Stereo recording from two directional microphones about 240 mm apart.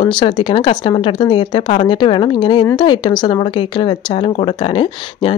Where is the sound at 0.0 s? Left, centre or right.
Left.